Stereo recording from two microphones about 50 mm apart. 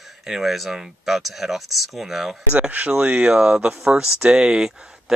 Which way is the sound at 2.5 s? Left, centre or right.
Right.